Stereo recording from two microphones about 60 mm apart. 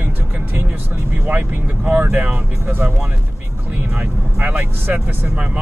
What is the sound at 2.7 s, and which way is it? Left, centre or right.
Speech, right.